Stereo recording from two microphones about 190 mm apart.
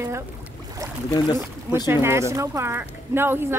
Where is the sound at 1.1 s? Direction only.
20° left (ahead or behind).